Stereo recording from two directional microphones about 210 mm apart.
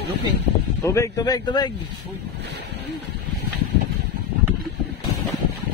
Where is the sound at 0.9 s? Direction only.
15° left (ahead or behind).